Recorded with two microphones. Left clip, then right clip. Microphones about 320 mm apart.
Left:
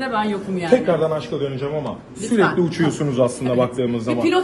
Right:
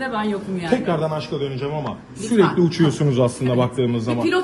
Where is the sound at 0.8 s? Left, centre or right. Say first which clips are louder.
Left 3 dB; right.